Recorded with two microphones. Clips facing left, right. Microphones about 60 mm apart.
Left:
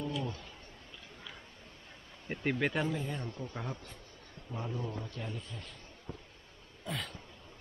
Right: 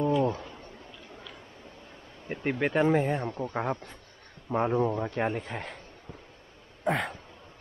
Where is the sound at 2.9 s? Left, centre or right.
Right.